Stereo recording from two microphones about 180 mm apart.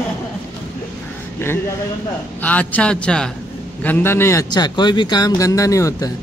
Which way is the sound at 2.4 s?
10° left (ahead or behind).